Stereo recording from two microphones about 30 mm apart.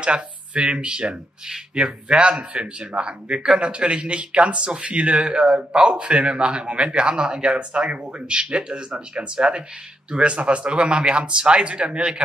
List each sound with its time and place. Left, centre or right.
0.0 s speech: right